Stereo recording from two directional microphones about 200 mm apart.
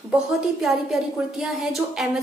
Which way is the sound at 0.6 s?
Centre (ahead or behind).